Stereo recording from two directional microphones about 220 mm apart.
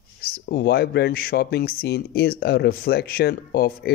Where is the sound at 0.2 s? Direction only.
45° left (ahead or behind).